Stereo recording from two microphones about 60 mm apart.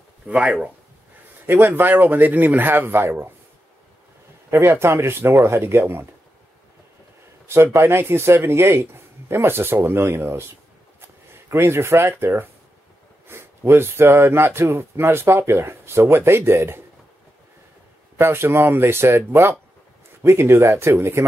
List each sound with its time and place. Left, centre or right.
0.3 s speech: centre
1.4 s a man's voice: right
4.5 s speech: right
7.4 s speech: right
11.5 s speech: right
18.1 s speech: right